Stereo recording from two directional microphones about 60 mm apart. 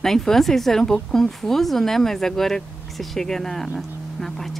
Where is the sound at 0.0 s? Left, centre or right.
Centre.